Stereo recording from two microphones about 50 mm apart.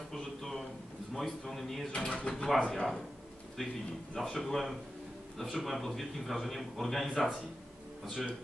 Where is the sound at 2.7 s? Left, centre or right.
Centre.